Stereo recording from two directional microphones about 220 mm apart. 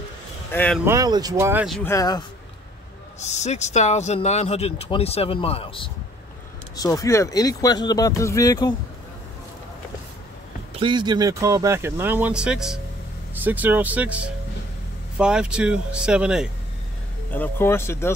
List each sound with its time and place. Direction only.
0.5 s speech: 10° left (ahead or behind)
0.8 s speech: 15° right (ahead or behind)
1.9 s speech: 15° left (ahead or behind)
3.2 s speech: 30° left (ahead or behind)
10.7 s speech: 20° right (ahead or behind); by 16.4 s 5° right (ahead or behind)
17.3 s speech: 10° left (ahead or behind)